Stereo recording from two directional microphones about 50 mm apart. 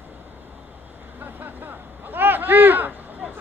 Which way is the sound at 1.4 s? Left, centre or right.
Right.